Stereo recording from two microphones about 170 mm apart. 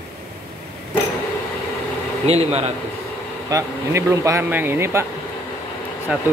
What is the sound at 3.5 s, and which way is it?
Speech, 20° right (ahead or behind).